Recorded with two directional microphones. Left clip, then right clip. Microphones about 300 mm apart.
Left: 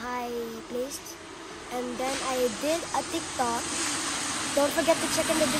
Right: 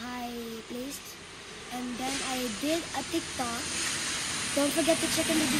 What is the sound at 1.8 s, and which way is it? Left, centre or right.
Speech, left.